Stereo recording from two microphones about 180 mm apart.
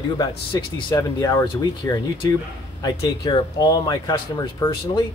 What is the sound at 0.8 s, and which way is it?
Speech, 20° left (ahead or behind).